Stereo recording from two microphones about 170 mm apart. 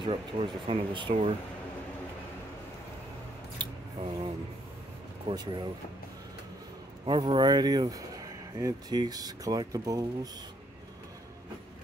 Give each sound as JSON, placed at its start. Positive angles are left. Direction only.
{"t": 0.0, "sound": "speech", "side_deg": -30}
{"t": 3.5, "sound": "scissors", "side_deg": -30}
{"t": 5.3, "sound": "speech", "side_deg": -25}
{"t": 7.1, "sound": "speech", "side_deg": -30}